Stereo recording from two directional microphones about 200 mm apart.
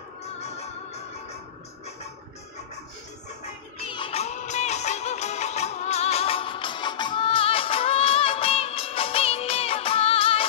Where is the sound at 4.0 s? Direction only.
30° left (ahead or behind).